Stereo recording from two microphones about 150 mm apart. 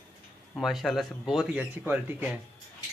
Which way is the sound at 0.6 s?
Centre (ahead or behind).